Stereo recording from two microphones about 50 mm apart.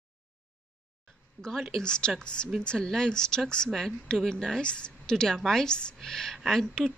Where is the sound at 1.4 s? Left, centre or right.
Centre.